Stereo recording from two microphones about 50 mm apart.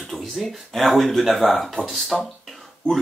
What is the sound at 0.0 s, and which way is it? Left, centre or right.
Speech, centre.